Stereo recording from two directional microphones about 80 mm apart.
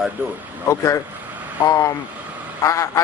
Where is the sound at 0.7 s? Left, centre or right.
Left.